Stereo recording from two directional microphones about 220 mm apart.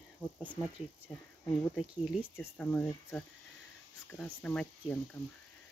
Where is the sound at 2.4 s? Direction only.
10° left (ahead or behind).